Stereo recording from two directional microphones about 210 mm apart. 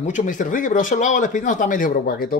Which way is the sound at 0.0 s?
35° left (ahead or behind).